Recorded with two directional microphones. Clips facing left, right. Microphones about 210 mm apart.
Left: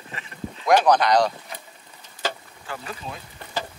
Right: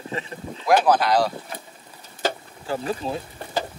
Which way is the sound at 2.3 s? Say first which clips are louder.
Right 7 dB; 35° right (ahead or behind).